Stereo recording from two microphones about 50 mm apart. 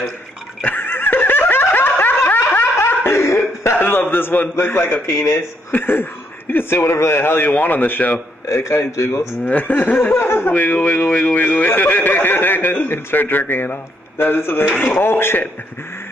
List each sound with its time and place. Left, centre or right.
0.6 s snicker: left
3.1 s a sound: left
3.8 s a man's voice: left
5.7 s speech: left
6.5 s a man's voice: left
7.5 s a man's voice: left
8.5 s a man's voice: left
9.5 s a man's voice: left
10.1 s chuckle: left
10.4 s a man's voice: left